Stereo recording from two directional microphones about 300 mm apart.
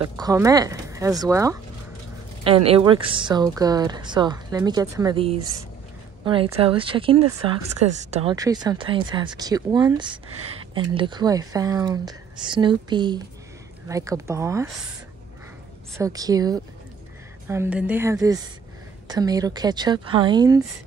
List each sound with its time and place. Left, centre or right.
0.0 s speech: centre
16.0 s speech: centre